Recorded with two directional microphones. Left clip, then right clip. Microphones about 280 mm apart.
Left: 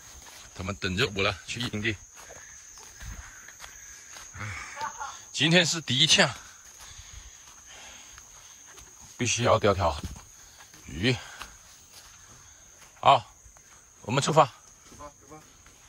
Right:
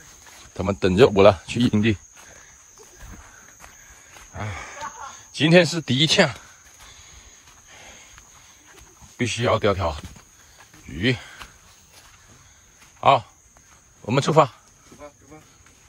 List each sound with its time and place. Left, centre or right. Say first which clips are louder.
0.6 s speech: right 12 dB; centre
3.6 s a sound: even; centre
5.3 s speech: right 6 dB; centre
9.1 s speech: right 2 dB; centre
13.0 s speech: right 3 dB; centre